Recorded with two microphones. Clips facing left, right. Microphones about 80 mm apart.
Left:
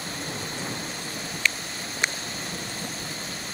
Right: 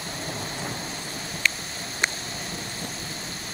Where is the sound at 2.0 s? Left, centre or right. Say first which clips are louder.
Right 1 dB; right.